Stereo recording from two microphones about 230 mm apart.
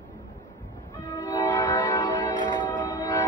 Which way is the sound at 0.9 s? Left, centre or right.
Centre.